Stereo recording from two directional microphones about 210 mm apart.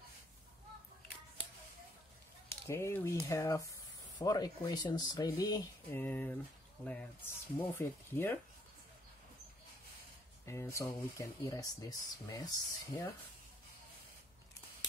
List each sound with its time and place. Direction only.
2.5 s speech: 10° left (ahead or behind)
10.4 s speech: 15° left (ahead or behind)